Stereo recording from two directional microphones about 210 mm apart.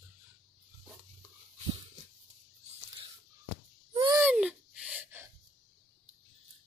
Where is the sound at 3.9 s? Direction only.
20° right (ahead or behind).